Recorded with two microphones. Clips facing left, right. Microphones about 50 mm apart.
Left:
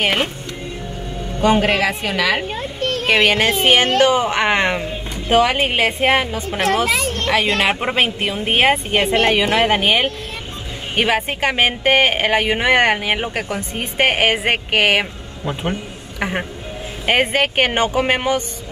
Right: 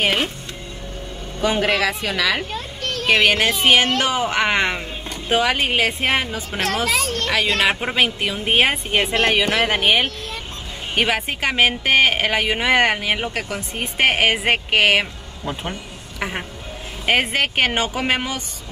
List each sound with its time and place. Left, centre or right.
0.0 s a woman's voice: left
1.4 s a woman's voice: left
4.5 s speech: centre
5.9 s a woman's voice: centre
6.6 s speech: left
11.0 s speech: centre
16.2 s a sound: centre
17.0 s speech: centre